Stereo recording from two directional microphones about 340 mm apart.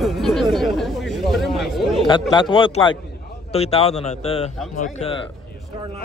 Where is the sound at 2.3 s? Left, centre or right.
Centre.